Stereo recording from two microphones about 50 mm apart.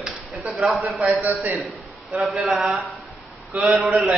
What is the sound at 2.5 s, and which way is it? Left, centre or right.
A man's voice, centre.